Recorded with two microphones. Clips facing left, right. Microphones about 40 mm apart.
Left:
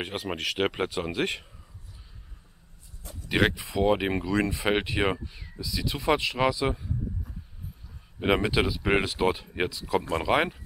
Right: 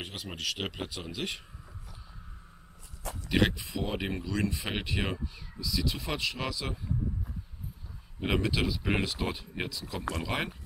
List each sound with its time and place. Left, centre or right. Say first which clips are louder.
0.0 s speech: left 6 dB; left
3.3 s speech: left 3 dB; centre
3.8 s speech: left 10 dB; left
8.2 s speech: left 5 dB; centre
9.9 s speech: left 9 dB; left